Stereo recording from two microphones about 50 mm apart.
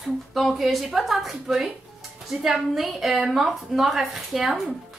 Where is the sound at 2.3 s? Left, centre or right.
Right.